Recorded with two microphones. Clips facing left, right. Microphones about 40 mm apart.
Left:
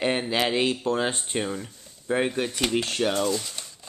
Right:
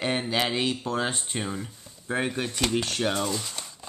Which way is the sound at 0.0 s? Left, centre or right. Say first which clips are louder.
Left 2 dB; centre.